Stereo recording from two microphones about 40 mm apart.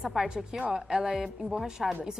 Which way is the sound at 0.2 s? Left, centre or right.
Centre.